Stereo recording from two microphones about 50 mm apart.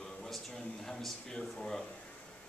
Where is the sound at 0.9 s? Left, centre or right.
Centre.